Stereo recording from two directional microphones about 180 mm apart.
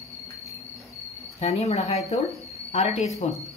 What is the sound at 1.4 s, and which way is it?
Speech, 35° left (ahead or behind).